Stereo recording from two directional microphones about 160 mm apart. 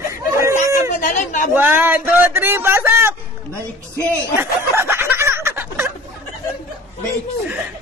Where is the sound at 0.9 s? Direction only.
55° left (ahead or behind).